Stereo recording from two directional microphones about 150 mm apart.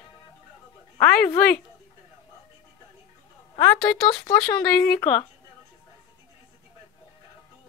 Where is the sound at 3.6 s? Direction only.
10° left (ahead or behind).